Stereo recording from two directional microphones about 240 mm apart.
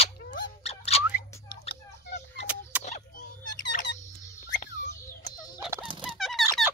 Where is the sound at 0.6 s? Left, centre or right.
Left.